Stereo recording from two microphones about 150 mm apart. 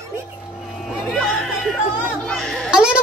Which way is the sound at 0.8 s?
Centre (ahead or behind).